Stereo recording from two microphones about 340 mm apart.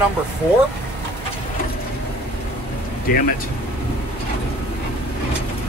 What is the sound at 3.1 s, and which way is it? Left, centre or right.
Speech, left.